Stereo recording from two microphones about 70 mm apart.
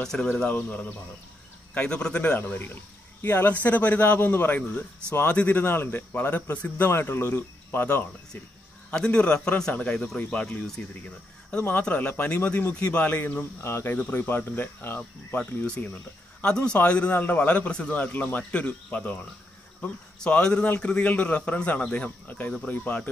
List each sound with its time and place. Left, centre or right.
0.0 s a man's voice: centre
0.5 s speech: left
2.4 s speech: left
6.9 s speech: left
8.9 s a man's voice: centre; by 15.0 s left
15.3 s speech: centre
20.2 s a man's voice: centre